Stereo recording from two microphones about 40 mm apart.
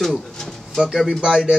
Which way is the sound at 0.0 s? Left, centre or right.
Centre.